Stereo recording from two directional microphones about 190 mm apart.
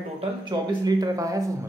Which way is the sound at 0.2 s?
20° right (ahead or behind).